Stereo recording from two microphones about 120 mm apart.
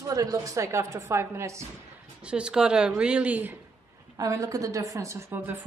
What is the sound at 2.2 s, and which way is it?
Speech, 10° right (ahead or behind).